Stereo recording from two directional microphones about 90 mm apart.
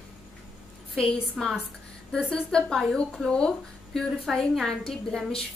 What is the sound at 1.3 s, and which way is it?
A woman's voice, 5° left (ahead or behind).